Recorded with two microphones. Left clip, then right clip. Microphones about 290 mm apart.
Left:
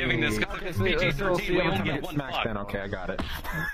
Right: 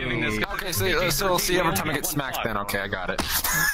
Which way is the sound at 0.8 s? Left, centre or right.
Right.